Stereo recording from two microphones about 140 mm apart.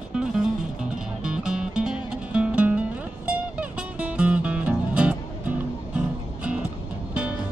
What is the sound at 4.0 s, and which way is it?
Music, 10° right (ahead or behind).